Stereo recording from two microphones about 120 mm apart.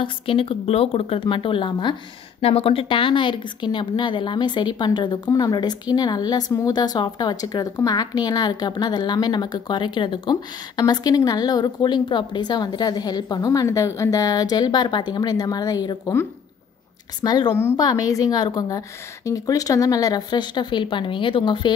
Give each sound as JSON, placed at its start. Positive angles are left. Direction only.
{"t": 0.0, "sound": "speech", "side_deg": 50}
{"t": 2.4, "sound": "speech", "side_deg": 55}
{"t": 17.2, "sound": "speech", "side_deg": 35}